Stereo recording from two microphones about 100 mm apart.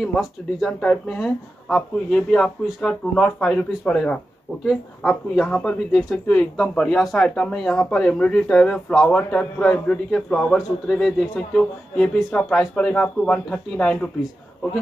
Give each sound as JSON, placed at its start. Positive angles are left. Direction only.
{"t": 0.0, "sound": "speech", "side_deg": 0}